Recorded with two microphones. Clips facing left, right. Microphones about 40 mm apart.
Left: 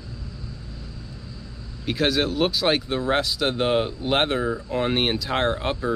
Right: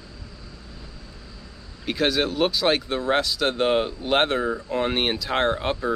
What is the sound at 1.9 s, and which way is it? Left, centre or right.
Speech, centre.